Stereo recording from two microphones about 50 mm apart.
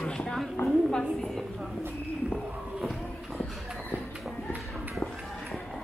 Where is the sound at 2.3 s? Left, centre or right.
Centre.